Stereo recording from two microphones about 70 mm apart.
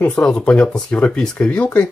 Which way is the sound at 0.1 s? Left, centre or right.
Centre.